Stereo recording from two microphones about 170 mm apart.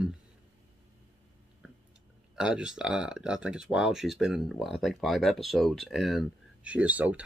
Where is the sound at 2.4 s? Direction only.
5° right (ahead or behind).